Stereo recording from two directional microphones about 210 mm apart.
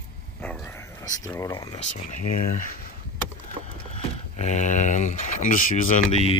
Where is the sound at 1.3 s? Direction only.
15° left (ahead or behind).